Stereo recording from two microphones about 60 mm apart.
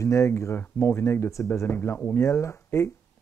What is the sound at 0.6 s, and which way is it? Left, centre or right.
Speech, left.